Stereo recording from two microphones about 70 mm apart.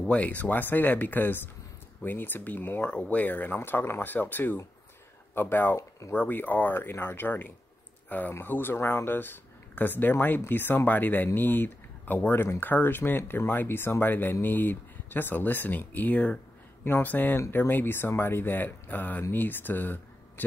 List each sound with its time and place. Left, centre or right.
0.0 s speech: centre
5.8 s speech: left
6.1 s speech: left